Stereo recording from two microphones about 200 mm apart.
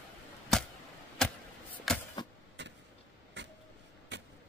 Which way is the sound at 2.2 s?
20° left (ahead or behind).